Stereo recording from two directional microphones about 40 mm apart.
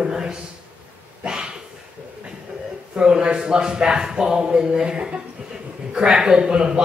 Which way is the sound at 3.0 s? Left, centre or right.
Right.